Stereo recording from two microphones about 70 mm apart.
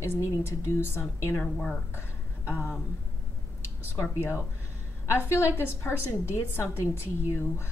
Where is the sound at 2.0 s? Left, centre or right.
Left.